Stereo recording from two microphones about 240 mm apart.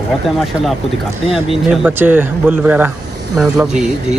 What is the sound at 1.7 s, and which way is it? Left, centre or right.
Speech, centre.